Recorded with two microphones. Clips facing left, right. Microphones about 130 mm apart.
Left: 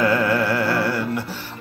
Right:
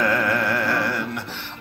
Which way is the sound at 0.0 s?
10° left (ahead or behind).